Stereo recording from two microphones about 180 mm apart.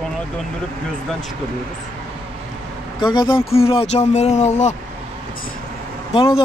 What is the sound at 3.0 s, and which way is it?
Speech, 25° left (ahead or behind).